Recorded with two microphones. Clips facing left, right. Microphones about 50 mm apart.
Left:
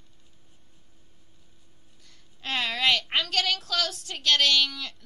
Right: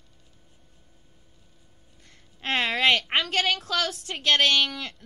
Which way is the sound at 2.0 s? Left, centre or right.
Right.